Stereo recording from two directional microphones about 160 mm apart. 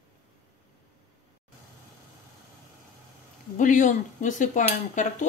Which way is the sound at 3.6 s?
50° left (ahead or behind).